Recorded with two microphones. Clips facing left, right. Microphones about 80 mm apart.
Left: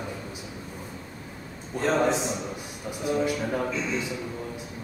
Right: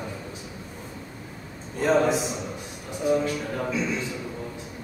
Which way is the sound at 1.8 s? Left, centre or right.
Centre.